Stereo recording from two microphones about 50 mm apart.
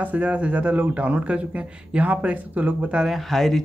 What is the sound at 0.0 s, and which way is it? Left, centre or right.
Speech, right.